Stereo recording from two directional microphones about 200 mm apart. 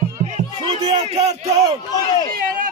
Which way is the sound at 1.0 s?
30° right (ahead or behind).